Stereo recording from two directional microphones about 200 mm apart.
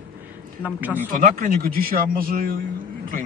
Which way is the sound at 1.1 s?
45° right (ahead or behind).